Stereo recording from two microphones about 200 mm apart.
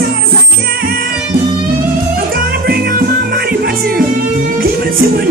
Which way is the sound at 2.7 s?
50° right (ahead or behind).